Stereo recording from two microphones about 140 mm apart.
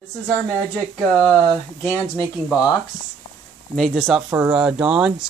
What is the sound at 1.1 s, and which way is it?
Speech, 10° left (ahead or behind).